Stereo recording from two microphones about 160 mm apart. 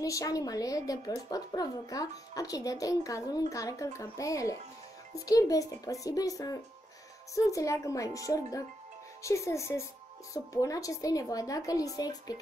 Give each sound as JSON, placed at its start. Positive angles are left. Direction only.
{"t": 0.0, "sound": "a woman's voice", "side_deg": 20}